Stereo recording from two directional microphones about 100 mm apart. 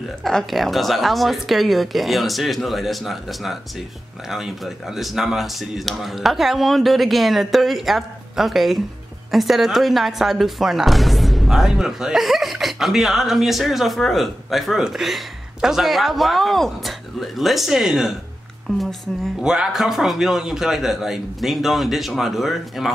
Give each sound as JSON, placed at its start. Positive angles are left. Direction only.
{"t": 0.2, "sound": "speech", "side_deg": 5}